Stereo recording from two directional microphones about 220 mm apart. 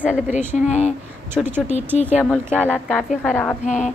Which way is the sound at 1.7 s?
30° left (ahead or behind).